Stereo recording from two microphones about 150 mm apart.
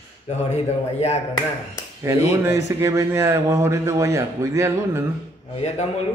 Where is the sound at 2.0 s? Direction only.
20° right (ahead or behind).